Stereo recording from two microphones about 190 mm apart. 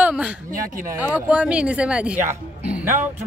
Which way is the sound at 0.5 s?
45° right (ahead or behind).